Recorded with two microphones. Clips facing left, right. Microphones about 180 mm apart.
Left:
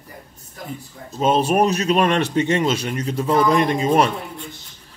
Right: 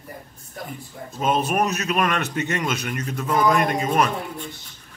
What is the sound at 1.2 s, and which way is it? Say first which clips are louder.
Speech: left 5 dB; 30° left (ahead or behind).